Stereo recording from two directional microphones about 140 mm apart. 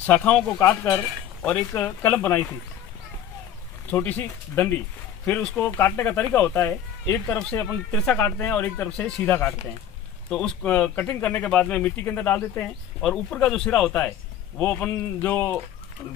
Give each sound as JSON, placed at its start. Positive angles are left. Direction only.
{"t": 0.0, "sound": "speech", "side_deg": 10}
{"t": 0.6, "sound": "cutlery", "side_deg": 20}
{"t": 1.7, "sound": "speech", "side_deg": 10}
{"t": 3.9, "sound": "speech", "side_deg": 10}
{"t": 10.3, "sound": "speech", "side_deg": 10}